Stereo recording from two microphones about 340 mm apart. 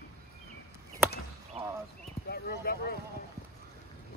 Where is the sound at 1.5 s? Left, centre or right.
Centre.